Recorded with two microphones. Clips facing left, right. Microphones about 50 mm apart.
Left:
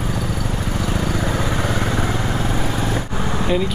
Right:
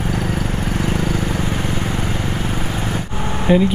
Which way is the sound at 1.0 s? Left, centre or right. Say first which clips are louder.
Right 1 dB; left.